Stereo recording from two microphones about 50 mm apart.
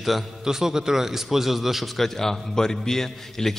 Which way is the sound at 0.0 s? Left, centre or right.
Centre.